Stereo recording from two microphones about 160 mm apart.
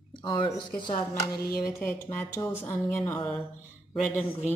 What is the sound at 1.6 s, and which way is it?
Speech, 15° left (ahead or behind).